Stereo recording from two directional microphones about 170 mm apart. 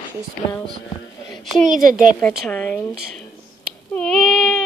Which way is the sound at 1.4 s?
Centre (ahead or behind).